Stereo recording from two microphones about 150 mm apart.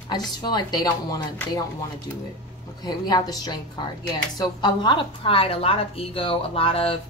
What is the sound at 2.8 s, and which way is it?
A woman's voice, 25° left (ahead or behind).